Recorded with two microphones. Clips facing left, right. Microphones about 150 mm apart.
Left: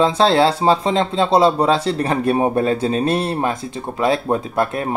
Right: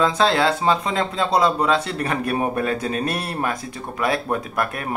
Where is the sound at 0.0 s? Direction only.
30° left (ahead or behind).